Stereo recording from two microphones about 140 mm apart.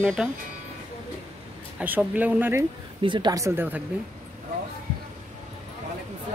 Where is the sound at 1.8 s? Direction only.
10° right (ahead or behind).